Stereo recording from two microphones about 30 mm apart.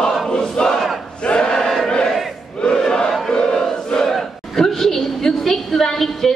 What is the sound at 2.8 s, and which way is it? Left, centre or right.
Crowd, left.